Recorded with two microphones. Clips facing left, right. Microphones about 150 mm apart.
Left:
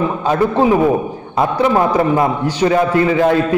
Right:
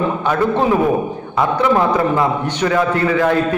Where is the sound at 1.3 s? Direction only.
20° left (ahead or behind).